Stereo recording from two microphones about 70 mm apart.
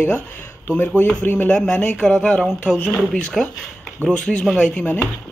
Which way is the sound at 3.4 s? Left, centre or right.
Centre.